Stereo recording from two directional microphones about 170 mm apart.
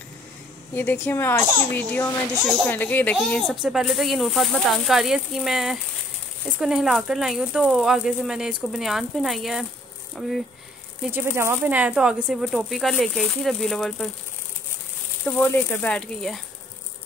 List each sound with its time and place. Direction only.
0.7 s speech: 10° left (ahead or behind)
2.4 s speech: centre (ahead or behind)
2.7 s speech: 10° left (ahead or behind)
11.1 s speech: 15° right (ahead or behind)
15.2 s speech: 10° left (ahead or behind)